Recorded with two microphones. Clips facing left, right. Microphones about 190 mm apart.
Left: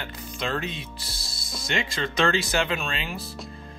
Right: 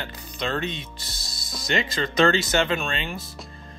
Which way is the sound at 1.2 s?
30° left (ahead or behind).